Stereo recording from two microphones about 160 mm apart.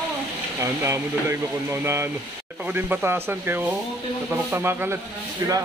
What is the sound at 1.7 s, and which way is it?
A man's voice, 15° right (ahead or behind).